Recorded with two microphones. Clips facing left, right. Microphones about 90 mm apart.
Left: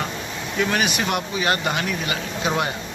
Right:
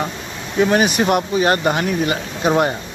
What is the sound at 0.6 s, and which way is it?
Speech, 30° right (ahead or behind).